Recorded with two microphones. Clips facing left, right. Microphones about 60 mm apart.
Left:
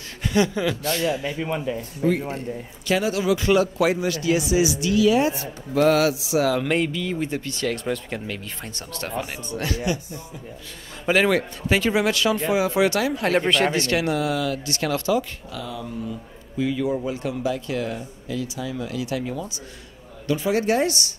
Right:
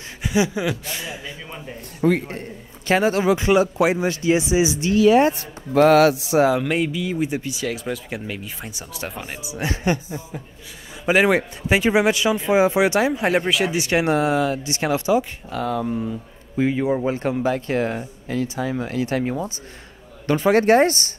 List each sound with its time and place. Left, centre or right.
0.2 s speech: centre
1.4 s a man's voice: left
1.8 s speech: right
2.9 s speech: right
3.3 s speech: right
5.3 s a man's voice: right
6.6 s speech: centre
9.6 s speech: right
11.1 s speech: centre
13.9 s speech: right
15.5 s a man's voice: right
16.5 s speech: right
20.2 s a man's voice: right